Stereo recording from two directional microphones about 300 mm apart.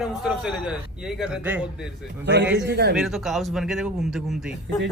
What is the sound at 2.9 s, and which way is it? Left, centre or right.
A man's voice, centre.